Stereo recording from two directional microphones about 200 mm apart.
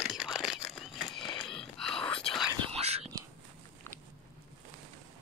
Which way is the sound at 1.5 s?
Centre (ahead or behind).